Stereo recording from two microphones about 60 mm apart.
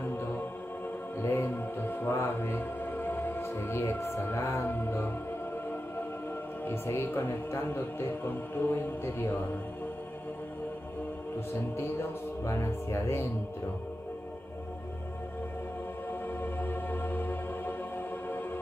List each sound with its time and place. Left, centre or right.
1.2 s mantra: left
6.6 s a man's voice: left
11.7 s speech: left
16.1 s music: left